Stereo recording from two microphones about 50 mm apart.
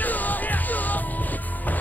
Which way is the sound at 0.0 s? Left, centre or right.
Left.